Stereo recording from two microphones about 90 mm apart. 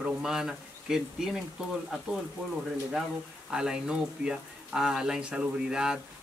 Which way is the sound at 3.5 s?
10° right (ahead or behind).